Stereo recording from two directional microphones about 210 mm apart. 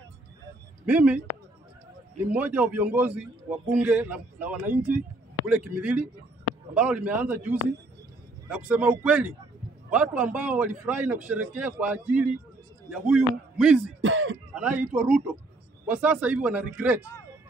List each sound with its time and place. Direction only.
0.8 s a man's voice: 5° right (ahead or behind)
2.2 s a man's voice: 5° right (ahead or behind)
14.0 s speech: 70° right (ahead or behind)
14.5 s a man's voice: 5° right (ahead or behind)